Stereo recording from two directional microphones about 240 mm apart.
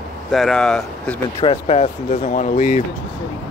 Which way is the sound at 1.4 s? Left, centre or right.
Left.